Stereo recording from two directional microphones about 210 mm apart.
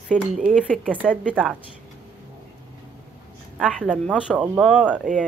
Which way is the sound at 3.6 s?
Centre (ahead or behind).